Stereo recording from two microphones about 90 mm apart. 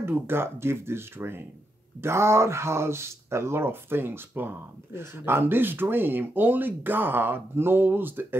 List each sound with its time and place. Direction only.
0.0 s speech: 25° right (ahead or behind)